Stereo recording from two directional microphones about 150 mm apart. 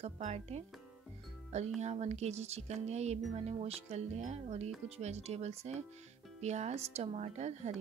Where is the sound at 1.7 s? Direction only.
50° right (ahead or behind).